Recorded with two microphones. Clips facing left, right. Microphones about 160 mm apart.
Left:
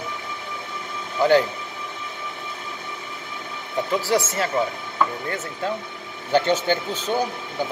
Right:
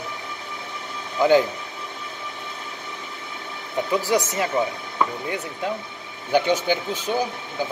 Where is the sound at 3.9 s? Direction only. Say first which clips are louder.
Even; 15° right (ahead or behind).